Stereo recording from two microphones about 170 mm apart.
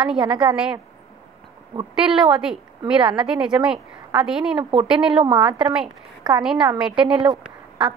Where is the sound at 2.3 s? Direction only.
5° right (ahead or behind).